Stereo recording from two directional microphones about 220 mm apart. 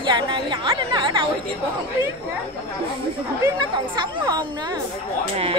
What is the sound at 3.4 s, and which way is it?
Speech, 20° right (ahead or behind).